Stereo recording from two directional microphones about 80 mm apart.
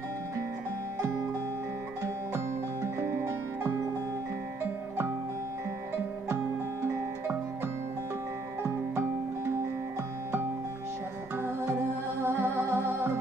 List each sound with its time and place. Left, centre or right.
2.3 s music: right
6.2 s music: right
11.3 s music: right